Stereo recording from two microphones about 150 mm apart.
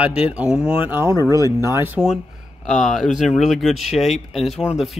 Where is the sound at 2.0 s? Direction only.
Centre (ahead or behind).